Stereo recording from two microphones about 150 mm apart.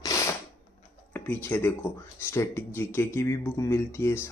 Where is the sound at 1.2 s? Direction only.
15° left (ahead or behind).